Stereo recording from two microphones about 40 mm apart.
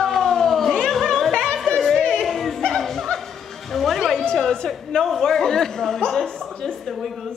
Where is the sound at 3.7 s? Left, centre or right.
Centre.